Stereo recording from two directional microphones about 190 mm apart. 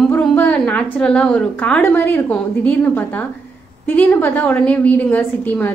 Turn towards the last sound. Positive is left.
turn(degrees=10)  # may be behind; listen again after turning